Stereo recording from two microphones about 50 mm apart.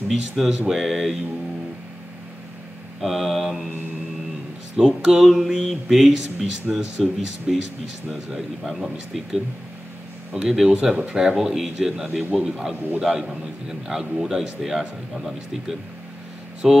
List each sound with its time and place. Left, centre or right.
0.1 s a man's voice: centre
3.0 s speech: centre
4.7 s a man's voice: centre